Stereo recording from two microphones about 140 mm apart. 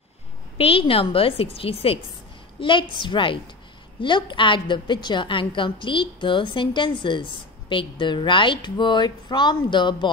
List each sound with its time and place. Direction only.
0.6 s speech: 40° left (ahead or behind)